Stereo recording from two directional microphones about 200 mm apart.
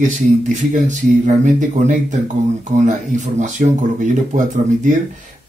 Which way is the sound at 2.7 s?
35° right (ahead or behind).